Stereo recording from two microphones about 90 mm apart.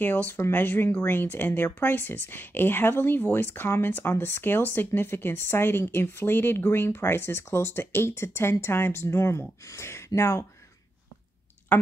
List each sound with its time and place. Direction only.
0.0 s speech: 20° left (ahead or behind)